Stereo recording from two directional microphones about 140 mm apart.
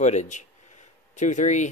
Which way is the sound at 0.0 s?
55° left (ahead or behind).